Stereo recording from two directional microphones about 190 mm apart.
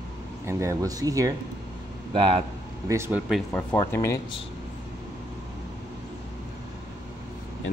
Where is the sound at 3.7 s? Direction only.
15° left (ahead or behind).